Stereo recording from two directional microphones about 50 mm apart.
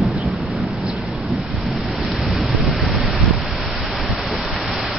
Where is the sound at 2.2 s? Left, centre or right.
Centre.